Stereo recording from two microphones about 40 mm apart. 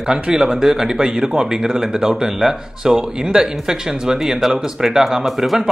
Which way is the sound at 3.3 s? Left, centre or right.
Centre.